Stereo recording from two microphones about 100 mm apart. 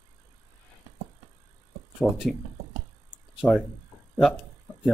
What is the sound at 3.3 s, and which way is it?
Speech, centre (ahead or behind).